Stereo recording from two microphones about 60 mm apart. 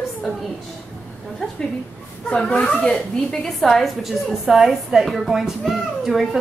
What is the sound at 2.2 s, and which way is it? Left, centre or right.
A woman's voice, centre.